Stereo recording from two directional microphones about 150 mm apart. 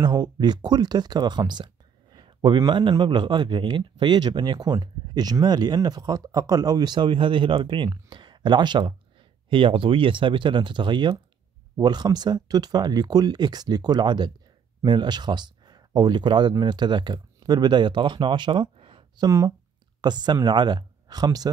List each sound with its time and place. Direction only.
0.0 s a man's voice: 25° right (ahead or behind)